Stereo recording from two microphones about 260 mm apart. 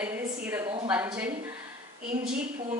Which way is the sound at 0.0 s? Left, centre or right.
Centre.